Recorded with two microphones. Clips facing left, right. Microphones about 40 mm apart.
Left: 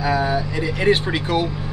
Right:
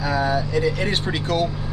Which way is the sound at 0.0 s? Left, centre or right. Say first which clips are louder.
Left 1 dB; centre.